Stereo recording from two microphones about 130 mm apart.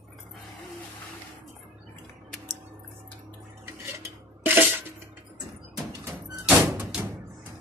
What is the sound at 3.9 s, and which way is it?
Filing, 20° right (ahead or behind).